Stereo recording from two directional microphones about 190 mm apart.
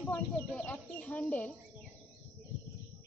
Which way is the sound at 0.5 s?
10° left (ahead or behind).